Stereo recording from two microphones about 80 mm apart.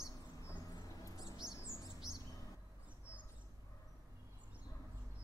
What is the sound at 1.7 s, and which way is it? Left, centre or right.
Chirp, right.